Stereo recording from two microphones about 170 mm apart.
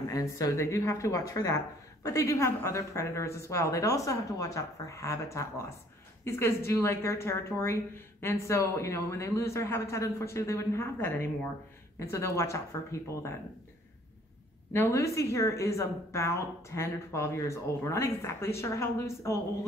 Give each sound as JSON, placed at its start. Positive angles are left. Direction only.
{"t": 0.1, "sound": "a woman's voice", "side_deg": 20}
{"t": 14.7, "sound": "a woman's voice", "side_deg": 15}